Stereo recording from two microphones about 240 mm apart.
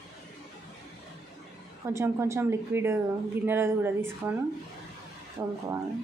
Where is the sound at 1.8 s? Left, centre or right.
Centre.